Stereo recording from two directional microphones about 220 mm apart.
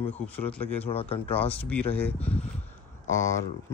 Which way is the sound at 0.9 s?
25° left (ahead or behind).